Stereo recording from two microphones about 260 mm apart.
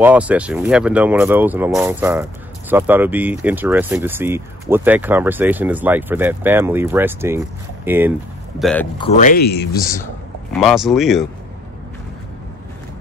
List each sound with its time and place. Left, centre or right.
0.0 s speech: centre
8.9 s speech: left
10.6 s speech: centre